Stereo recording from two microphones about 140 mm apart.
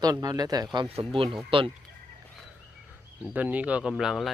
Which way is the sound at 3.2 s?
10° right (ahead or behind).